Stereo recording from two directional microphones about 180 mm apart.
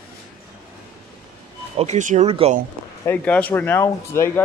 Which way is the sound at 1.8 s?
40° right (ahead or behind).